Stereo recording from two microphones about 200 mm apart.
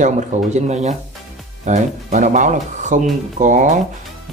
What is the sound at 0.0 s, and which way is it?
Speech, 35° right (ahead or behind).